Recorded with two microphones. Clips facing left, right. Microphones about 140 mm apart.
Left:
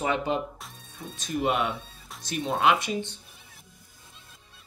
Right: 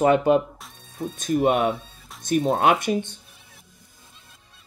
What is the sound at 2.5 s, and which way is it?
Speech, 50° right (ahead or behind).